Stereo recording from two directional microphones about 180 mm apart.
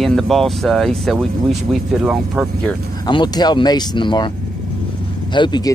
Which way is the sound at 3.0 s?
25° left (ahead or behind).